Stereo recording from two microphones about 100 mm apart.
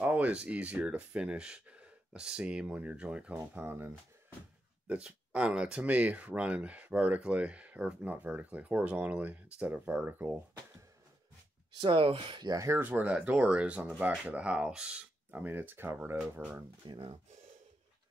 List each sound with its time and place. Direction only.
0.0 s speech: 15° right (ahead or behind)
11.8 s speech: 65° right (ahead or behind); by 12.7 s 40° right (ahead or behind)
12.7 s speech: 15° right (ahead or behind)
16.8 s speech: 50° right (ahead or behind)